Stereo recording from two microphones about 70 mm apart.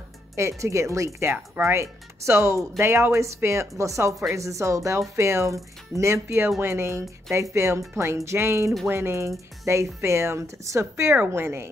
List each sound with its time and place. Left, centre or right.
0.4 s a woman's voice: right